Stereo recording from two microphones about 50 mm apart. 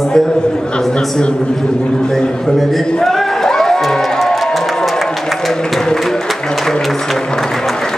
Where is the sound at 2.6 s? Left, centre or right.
Centre.